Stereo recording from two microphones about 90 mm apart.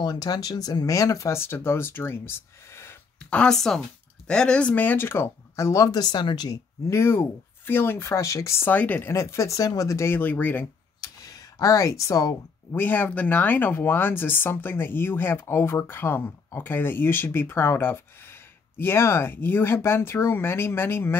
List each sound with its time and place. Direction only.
0.0 s speech: 45° left (ahead or behind); by 3.3 s 25° left (ahead or behind)
3.3 s speech: 10° left (ahead or behind); by 6.6 s 50° left (ahead or behind)
6.9 s speech: 25° left (ahead or behind)
9.1 s speech: 30° left (ahead or behind)
11.0 s a sound: 40° left (ahead or behind)
12.7 s speech: 20° left (ahead or behind)